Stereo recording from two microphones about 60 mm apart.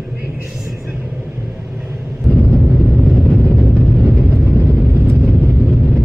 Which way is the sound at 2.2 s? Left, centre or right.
Right.